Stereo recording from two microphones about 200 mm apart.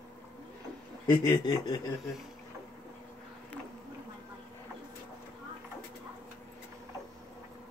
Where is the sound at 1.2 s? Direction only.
20° left (ahead or behind).